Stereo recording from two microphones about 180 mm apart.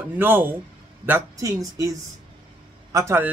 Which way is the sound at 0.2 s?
10° right (ahead or behind).